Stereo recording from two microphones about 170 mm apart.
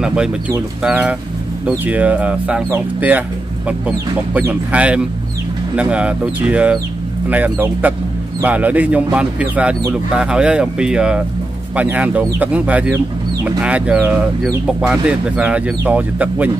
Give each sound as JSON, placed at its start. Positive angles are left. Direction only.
{"t": 0.0, "sound": "speech", "side_deg": -5}